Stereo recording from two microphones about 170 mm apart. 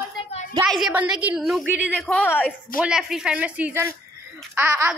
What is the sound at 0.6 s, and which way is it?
A woman's voice, centre (ahead or behind).